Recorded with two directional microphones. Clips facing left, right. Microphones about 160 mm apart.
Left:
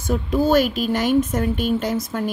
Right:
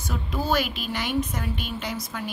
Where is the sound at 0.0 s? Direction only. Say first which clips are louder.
Left 10 dB; 50° left (ahead or behind).